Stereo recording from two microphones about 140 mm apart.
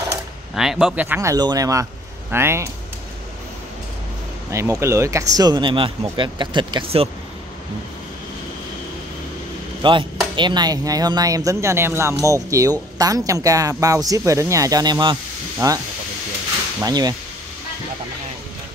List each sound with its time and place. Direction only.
0.6 s speech: 5° right (ahead or behind)
1.0 s speech: 15° right (ahead or behind)
1.3 s speech: 30° right (ahead or behind)
4.5 s speech: 20° right (ahead or behind); by 7.1 s 40° right (ahead or behind)
9.8 s speech: 35° right (ahead or behind)
16.8 s speech: 25° right (ahead or behind)